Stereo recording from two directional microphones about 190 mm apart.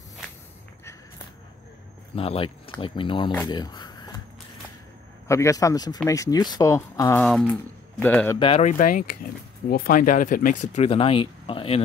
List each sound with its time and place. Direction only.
2.1 s speech: 30° left (ahead or behind)
3.4 s a sound: 20° left (ahead or behind)
5.3 s speech: 15° left (ahead or behind)
7.2 s speech: centre (ahead or behind)
8.4 s speech: 30° left (ahead or behind)